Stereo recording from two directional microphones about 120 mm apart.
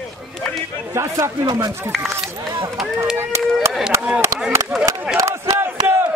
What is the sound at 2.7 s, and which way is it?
Speech, 5° right (ahead or behind).